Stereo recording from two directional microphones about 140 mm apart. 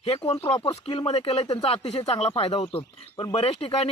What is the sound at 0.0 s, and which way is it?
Speech, 45° left (ahead or behind).